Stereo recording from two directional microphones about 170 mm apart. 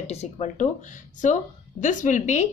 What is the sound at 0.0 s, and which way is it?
Speech, 40° left (ahead or behind).